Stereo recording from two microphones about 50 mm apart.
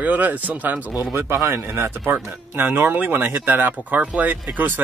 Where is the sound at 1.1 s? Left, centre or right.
Right.